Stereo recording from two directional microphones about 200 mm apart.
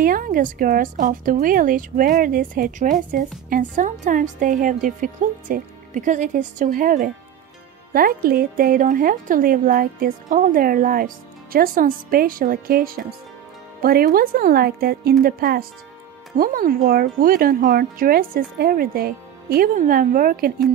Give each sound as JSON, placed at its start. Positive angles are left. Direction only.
{"t": 0.0, "sound": "a woman's voice", "side_deg": -45}